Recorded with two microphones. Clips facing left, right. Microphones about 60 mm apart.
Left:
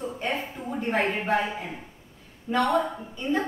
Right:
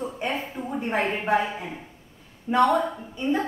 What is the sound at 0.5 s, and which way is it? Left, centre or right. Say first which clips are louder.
A woman's voice: even; centre.